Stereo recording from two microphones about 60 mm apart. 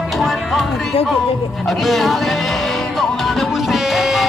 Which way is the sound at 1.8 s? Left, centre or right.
Centre.